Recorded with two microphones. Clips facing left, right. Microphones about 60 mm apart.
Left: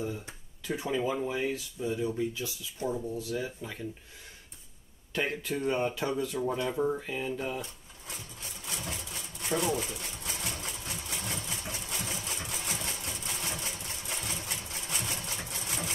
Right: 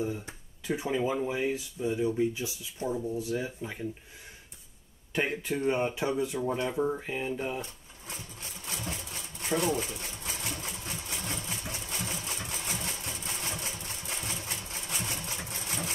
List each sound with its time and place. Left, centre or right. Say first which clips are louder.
0.0 s speech: right 3 dB; right
2.9 s speech: right 2 dB; centre
3.2 s speech: right 2 dB; centre
5.1 s speech: right 1 dB; centre
6.7 s speech: even; centre
7.0 s speech: right 1 dB; right
8.7 s sewing machine: right 1 dB; right
10.8 s engine: even; right
11.4 s vehicle: even; right
11.9 s sewing machine: right 1 dB; right
13.6 s vehicle: even; right
14.0 s sewing machine: even; right
14.4 s vehicle: even; right
15.2 s sewing machine: even; right